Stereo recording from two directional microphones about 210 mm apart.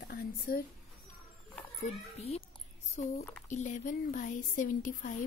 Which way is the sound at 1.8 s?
30° left (ahead or behind).